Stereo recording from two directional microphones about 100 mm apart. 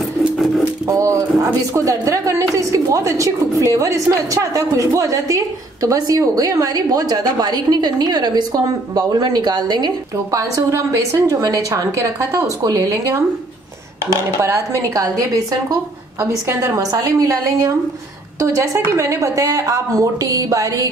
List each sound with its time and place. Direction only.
0.8 s a woman's voice: 35° right (ahead or behind)
14.4 s a woman's voice: 30° right (ahead or behind)